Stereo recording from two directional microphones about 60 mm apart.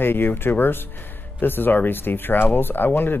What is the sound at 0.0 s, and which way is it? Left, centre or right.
Speech, left.